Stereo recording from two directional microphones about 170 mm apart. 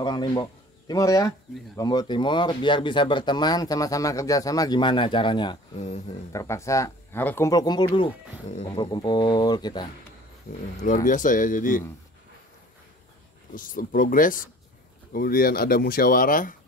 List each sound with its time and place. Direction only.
0.0 s speech: 25° left (ahead or behind)
5.8 s speech: 40° left (ahead or behind)
6.3 s speech: 15° left (ahead or behind)
11.1 s speech: 50° left (ahead or behind)
13.6 s speech: 55° left (ahead or behind)